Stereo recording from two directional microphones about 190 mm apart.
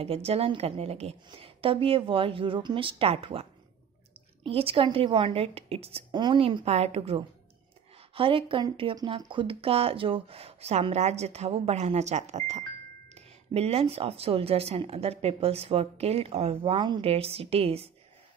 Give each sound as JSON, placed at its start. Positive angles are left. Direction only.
{"t": 0.0, "sound": "a woman's voice", "side_deg": -30}